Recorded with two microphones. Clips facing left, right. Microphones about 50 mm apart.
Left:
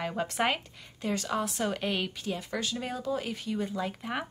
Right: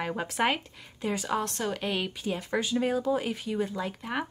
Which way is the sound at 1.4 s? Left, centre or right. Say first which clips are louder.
Even; centre.